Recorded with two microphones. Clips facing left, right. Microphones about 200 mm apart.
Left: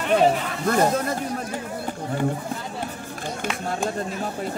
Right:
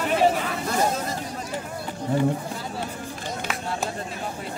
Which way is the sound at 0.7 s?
55° left (ahead or behind).